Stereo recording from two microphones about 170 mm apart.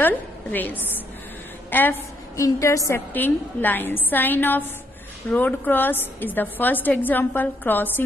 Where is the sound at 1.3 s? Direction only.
10° left (ahead or behind).